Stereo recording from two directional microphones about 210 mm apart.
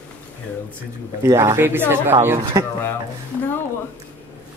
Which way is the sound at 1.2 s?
15° right (ahead or behind).